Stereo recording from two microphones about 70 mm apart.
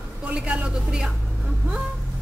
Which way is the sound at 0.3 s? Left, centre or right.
Centre.